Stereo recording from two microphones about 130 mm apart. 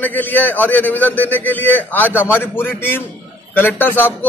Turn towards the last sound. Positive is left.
turn(degrees=15)  # may be behind; listen again after turning